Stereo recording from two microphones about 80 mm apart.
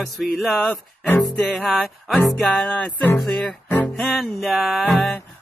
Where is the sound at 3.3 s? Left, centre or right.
Centre.